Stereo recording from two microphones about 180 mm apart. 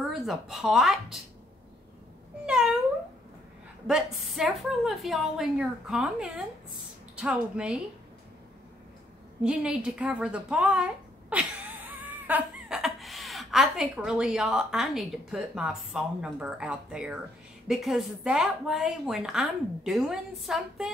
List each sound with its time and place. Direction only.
0.1 s a woman's voice: centre (ahead or behind)
2.4 s cat: 5° right (ahead or behind)
3.8 s a woman's voice: centre (ahead or behind)
9.4 s a woman's voice: 5° right (ahead or behind)